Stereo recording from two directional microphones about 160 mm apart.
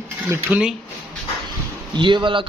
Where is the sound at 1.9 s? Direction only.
30° right (ahead or behind).